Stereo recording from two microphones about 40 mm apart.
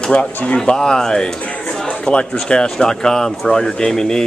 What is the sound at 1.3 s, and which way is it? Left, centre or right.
Music, left.